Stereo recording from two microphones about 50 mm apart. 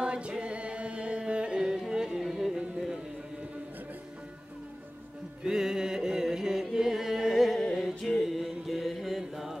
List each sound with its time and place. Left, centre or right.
0.0 s music: centre
2.5 s music: centre
5.4 s music: centre
7.7 s mantra: centre